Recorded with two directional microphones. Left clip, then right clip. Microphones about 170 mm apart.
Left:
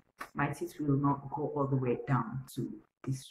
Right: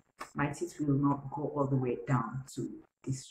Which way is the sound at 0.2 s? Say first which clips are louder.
Even; centre (ahead or behind).